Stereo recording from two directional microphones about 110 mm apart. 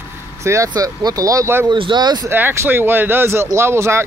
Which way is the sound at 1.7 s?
45° right (ahead or behind).